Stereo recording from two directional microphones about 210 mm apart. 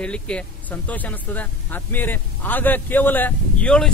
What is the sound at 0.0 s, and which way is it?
Speech, 5° left (ahead or behind).